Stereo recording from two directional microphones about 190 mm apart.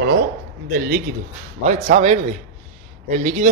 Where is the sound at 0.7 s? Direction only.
50° right (ahead or behind).